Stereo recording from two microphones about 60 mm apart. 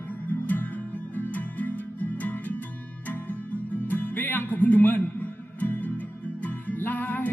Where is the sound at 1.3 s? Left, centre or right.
Left.